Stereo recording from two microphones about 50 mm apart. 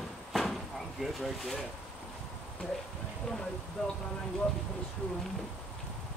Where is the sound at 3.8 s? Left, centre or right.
Centre.